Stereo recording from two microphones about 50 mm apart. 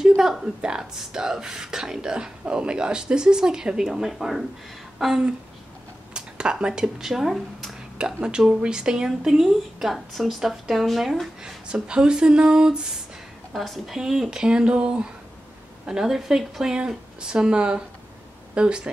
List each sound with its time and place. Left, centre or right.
0.2 s speech: centre
0.6 s speech: centre
4.9 s a sound: centre
6.1 s speech: centre
7.1 s speech: centre
8.0 s speech: centre
11.4 s speech: centre
13.5 s speech: centre
15.9 s speech: centre